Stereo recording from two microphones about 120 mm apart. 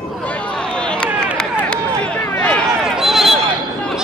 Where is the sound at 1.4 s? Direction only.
10° left (ahead or behind).